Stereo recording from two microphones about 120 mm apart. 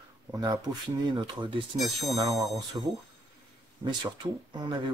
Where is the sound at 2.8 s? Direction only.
35° right (ahead or behind).